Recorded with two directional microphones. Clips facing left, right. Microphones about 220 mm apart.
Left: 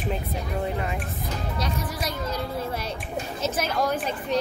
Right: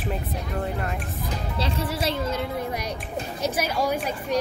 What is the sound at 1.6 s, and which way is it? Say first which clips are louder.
Speech: right 6 dB; 30° right (ahead or behind).